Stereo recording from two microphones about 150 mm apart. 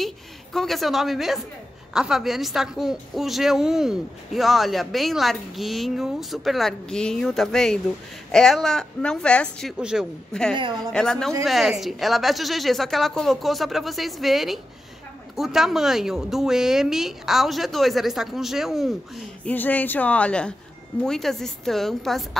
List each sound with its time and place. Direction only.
0.0 s a woman's voice: centre (ahead or behind)
10.5 s a woman's voice: 30° right (ahead or behind)
10.9 s a woman's voice: 5° left (ahead or behind)
19.4 s a woman's voice: 10° left (ahead or behind)